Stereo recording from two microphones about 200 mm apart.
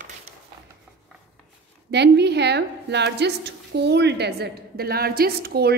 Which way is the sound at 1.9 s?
55° right (ahead or behind).